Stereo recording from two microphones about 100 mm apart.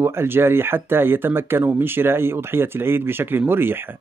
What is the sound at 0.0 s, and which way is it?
Speech, 25° right (ahead or behind).